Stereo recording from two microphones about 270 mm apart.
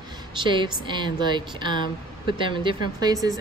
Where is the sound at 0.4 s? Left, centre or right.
Centre.